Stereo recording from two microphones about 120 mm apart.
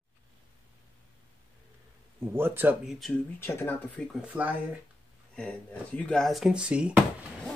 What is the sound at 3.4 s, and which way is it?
Speech, 20° left (ahead or behind).